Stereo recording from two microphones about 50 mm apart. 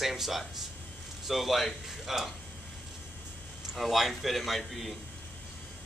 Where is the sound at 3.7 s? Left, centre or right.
Centre.